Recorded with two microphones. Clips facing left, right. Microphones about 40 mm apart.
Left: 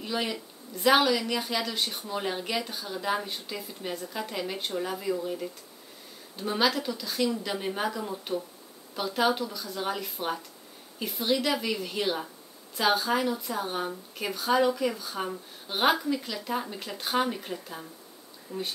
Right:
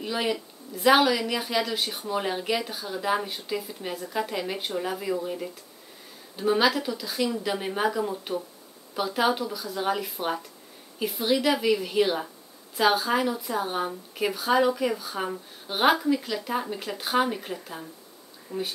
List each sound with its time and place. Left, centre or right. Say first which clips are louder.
0.0 s speech: right 3 dB; centre